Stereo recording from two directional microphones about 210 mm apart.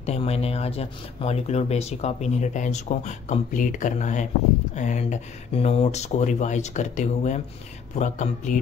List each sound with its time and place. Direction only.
0.0 s speech: 30° left (ahead or behind)